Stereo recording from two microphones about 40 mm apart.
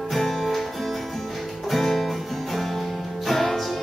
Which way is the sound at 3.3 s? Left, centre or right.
Centre.